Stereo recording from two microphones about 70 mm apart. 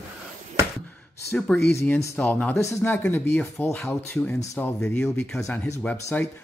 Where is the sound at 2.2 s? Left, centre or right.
Left.